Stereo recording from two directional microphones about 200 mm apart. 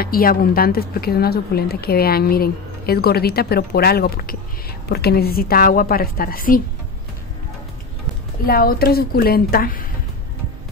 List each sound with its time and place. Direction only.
0.0 s speech: 45° left (ahead or behind)
8.5 s speech: 50° left (ahead or behind)